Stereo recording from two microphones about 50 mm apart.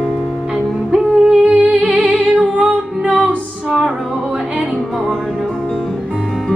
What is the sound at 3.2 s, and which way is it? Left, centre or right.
Music, centre.